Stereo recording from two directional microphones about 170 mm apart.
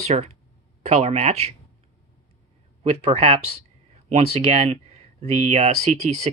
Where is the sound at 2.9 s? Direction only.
35° right (ahead or behind).